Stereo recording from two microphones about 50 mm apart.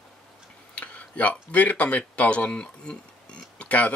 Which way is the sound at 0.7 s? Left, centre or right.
Left.